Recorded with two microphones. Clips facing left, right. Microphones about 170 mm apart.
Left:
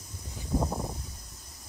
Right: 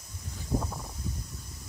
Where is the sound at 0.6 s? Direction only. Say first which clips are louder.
Left 6 dB; 30° left (ahead or behind).